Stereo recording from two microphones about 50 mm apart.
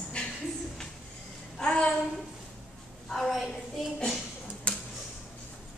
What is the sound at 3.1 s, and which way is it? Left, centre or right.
Speech, centre.